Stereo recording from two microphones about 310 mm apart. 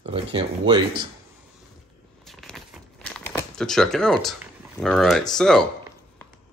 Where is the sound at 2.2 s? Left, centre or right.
Centre.